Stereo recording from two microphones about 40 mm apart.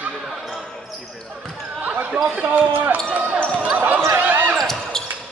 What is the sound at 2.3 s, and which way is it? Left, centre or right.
Speech, right.